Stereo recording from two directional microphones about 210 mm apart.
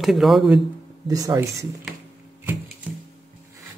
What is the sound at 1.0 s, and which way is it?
Speech, 15° right (ahead or behind).